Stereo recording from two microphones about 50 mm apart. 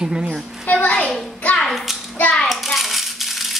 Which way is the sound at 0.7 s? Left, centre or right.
Left.